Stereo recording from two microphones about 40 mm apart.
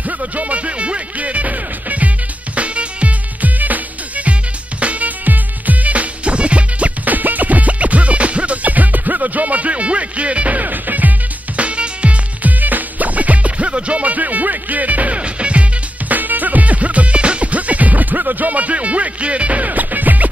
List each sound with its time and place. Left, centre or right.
0.2 s music: right
12.5 s music: right
16.1 s music: right